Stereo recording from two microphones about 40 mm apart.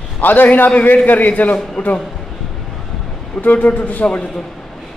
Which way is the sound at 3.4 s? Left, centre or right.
Left.